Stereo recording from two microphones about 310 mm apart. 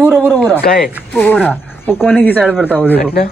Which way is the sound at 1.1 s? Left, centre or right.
Centre.